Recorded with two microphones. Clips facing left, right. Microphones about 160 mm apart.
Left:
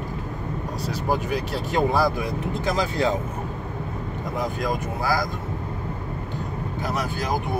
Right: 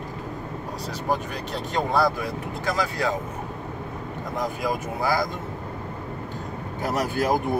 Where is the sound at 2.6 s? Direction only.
20° left (ahead or behind).